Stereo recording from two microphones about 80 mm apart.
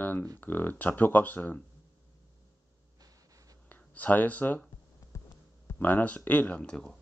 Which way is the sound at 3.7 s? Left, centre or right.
Left.